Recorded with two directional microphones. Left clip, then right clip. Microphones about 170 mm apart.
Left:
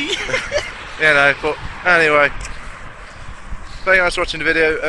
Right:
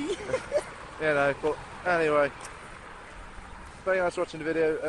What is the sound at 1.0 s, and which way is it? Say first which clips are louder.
Speech: left 12 dB; 10° left (ahead or behind).